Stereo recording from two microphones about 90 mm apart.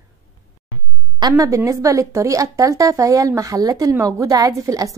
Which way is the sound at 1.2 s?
40° right (ahead or behind).